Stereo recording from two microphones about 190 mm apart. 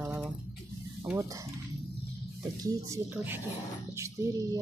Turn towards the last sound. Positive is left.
turn(degrees=-15)  # may be behind; listen again after turning